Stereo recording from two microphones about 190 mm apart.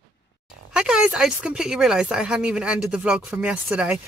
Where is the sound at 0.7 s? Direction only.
5° right (ahead or behind).